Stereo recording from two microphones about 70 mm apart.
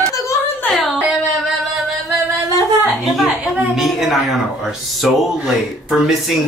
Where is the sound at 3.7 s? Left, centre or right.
Centre.